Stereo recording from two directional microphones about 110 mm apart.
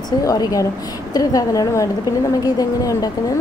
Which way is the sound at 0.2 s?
35° left (ahead or behind).